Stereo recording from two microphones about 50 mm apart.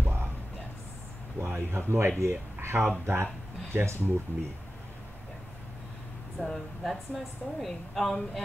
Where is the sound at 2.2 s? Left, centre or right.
Right.